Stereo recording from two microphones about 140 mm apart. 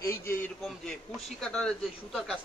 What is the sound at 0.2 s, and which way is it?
Speech, 20° left (ahead or behind).